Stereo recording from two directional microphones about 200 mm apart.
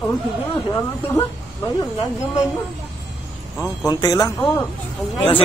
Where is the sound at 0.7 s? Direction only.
15° left (ahead or behind).